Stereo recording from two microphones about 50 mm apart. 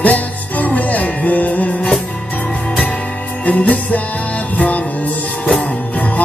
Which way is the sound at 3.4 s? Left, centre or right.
Left.